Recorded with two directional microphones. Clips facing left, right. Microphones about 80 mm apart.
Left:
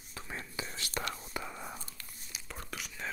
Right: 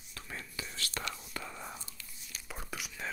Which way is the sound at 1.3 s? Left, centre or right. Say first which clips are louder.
Left 2 dB; centre.